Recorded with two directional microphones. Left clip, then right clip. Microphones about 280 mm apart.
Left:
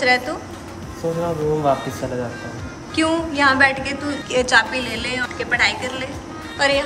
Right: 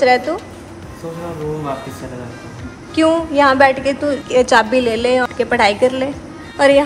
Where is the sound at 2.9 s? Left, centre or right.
Centre.